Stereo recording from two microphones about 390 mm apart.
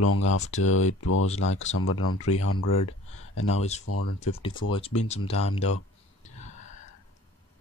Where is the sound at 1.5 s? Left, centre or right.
Centre.